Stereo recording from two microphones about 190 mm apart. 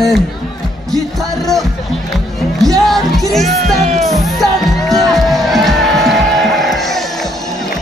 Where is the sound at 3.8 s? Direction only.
35° right (ahead or behind).